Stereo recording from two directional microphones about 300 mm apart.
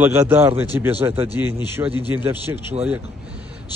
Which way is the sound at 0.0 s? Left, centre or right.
Centre.